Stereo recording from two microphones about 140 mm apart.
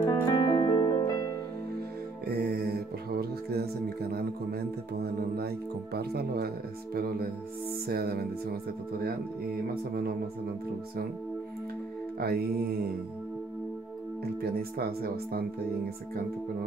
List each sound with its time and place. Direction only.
0.0 s music: 35° left (ahead or behind)
2.2 s music: 90° right
4.0 s speech: 90° right
12.2 s speech: 90° right
14.4 s speech: 90° right